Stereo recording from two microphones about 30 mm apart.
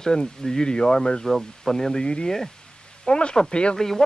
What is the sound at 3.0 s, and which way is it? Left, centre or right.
Speech, left.